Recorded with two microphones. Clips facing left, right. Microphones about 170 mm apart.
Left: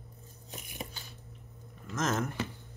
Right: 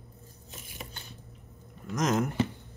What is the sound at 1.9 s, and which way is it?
Speech, 15° right (ahead or behind).